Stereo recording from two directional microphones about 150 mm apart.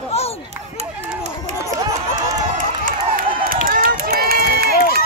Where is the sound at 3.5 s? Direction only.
70° right (ahead or behind); by 4.7 s 85° right.